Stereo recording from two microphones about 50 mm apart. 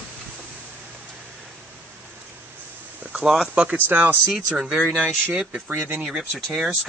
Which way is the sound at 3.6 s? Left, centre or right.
Right.